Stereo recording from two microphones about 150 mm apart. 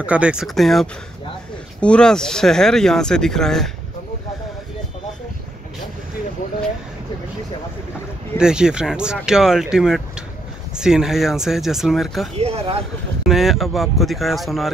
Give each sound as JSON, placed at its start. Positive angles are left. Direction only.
{"t": 0.0, "sound": "speech", "side_deg": -10}
{"t": 8.4, "sound": "speech", "side_deg": -5}
{"t": 12.4, "sound": "speech", "side_deg": -45}
{"t": 13.3, "sound": "speech", "side_deg": 0}